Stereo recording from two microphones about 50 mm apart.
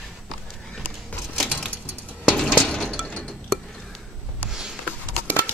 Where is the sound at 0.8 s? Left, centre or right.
Left.